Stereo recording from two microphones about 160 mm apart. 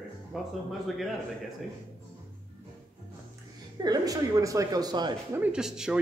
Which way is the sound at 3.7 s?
25° right (ahead or behind).